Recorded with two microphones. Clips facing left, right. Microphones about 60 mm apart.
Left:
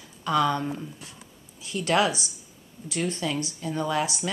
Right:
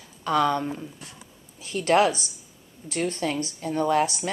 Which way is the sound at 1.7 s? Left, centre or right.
Right.